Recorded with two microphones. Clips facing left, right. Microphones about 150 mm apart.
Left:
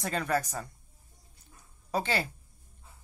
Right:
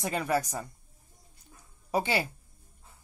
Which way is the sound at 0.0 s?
10° right (ahead or behind).